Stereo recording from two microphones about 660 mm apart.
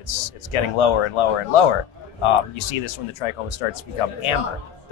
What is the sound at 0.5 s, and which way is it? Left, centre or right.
Speech, left.